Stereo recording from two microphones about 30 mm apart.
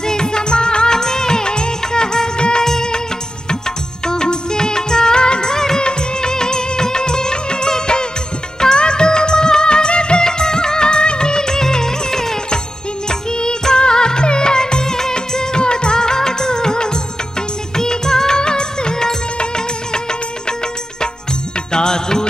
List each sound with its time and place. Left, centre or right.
0.0 s music of bollywood: left
2.6 s music: left
4.0 s music of bollywood: left
13.1 s music: left
17.7 s music of bollywood: centre
19.3 s music: left
21.7 s music: left